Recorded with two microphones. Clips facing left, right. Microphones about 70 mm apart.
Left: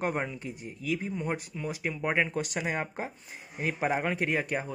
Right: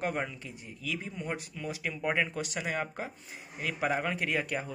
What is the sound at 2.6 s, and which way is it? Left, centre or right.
Speech, left.